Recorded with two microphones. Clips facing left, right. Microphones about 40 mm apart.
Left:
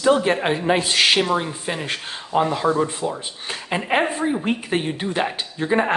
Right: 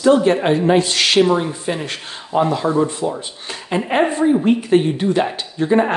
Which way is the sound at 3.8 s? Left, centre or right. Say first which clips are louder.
Right 5 dB; centre.